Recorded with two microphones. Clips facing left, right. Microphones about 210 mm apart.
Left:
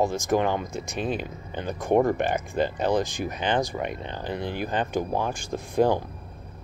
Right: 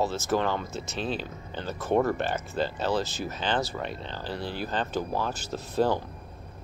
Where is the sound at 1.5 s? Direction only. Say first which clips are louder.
Left 3 dB; 15° left (ahead or behind).